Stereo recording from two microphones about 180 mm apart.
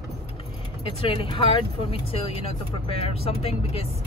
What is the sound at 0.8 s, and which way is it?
Speech, 30° left (ahead or behind).